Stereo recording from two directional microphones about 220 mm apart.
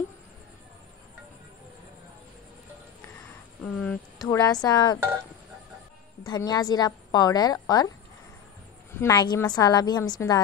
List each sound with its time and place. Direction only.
3.6 s a sound: 5° left (ahead or behind)
4.2 s a woman's voice: 15° left (ahead or behind)
6.2 s a woman's voice: 20° left (ahead or behind)
8.9 s a woman's voice: 15° left (ahead or behind)